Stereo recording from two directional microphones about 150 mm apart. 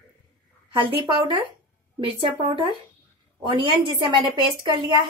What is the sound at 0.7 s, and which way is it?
A woman's voice, 35° right (ahead or behind).